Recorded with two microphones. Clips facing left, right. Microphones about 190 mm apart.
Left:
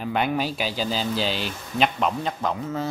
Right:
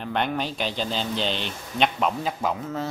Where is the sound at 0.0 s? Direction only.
5° left (ahead or behind).